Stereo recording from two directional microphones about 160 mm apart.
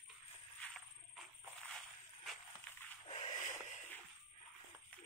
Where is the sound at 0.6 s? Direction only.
Centre (ahead or behind).